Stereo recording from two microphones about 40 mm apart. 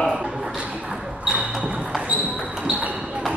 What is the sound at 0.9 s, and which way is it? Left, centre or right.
Basketball bounce, centre.